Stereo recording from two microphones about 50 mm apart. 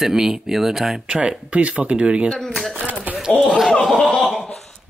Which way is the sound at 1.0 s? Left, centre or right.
Right.